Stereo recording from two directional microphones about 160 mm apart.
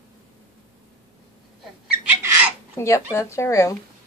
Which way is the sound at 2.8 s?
20° left (ahead or behind).